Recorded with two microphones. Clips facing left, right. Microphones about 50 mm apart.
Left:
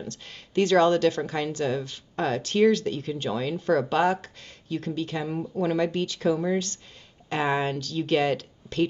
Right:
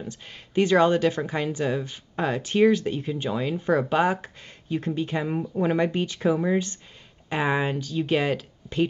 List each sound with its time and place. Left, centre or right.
0.0 s a woman's voice: centre